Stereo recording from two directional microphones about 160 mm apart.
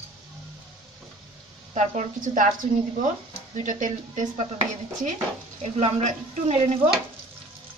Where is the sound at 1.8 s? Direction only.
50° right (ahead or behind).